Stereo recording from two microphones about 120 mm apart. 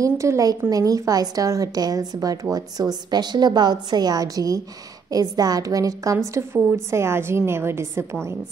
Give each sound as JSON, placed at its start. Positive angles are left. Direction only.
{"t": 0.0, "sound": "a woman's voice", "side_deg": -25}